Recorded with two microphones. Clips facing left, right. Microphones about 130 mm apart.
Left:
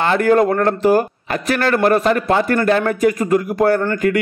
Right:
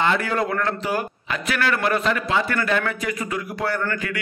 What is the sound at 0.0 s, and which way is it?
A man's voice, 45° left (ahead or behind).